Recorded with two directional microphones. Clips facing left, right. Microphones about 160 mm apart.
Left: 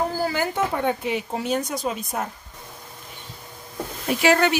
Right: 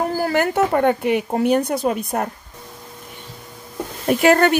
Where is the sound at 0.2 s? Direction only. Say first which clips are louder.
Right 5 dB; 60° right (ahead or behind).